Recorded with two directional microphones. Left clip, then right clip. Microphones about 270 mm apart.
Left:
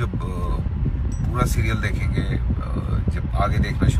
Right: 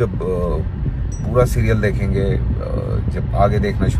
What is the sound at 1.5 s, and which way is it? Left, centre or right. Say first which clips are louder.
Speech: right 7 dB; centre.